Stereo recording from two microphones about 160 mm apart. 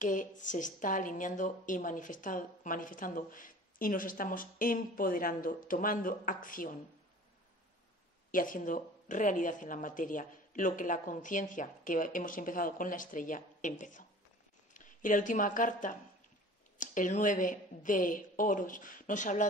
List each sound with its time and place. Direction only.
0.0 s a woman's voice: 55° left (ahead or behind)
8.3 s a woman's voice: 55° left (ahead or behind)